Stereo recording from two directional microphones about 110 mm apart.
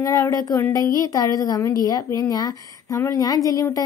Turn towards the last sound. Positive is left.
turn(degrees=30)  # may be behind; listen again after turning